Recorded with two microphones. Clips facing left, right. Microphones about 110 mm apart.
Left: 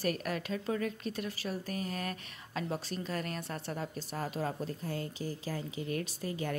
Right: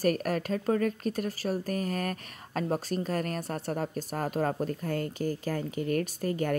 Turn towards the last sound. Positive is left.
turn(degrees=-50)  # may be behind; listen again after turning